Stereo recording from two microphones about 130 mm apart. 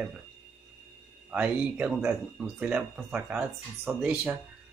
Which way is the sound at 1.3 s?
10° right (ahead or behind).